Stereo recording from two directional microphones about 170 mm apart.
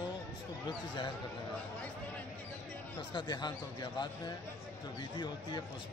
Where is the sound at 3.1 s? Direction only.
25° left (ahead or behind).